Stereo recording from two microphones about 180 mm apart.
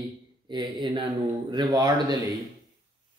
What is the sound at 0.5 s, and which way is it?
Speech, 25° right (ahead or behind).